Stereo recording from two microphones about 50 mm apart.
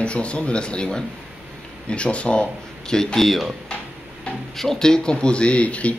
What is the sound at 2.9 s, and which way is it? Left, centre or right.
Speech, centre.